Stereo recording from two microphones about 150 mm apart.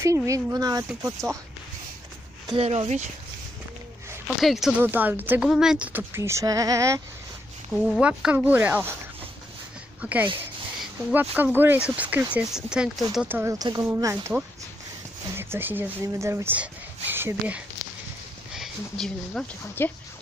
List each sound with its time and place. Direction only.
0.0 s speech: 20° right (ahead or behind)
2.5 s speech: 40° right (ahead or behind)
4.4 s speech: centre (ahead or behind); by 7.0 s 20° right (ahead or behind)
7.7 s speech: centre (ahead or behind)
10.0 s speech: 10° right (ahead or behind)
13.3 s speech: 15° right (ahead or behind)
15.3 s speech: 15° right (ahead or behind)
18.5 s speech: centre (ahead or behind)
19.8 s speech: 15° left (ahead or behind)